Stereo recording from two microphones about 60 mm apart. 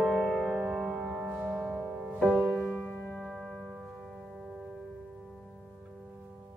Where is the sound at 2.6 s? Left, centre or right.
Left.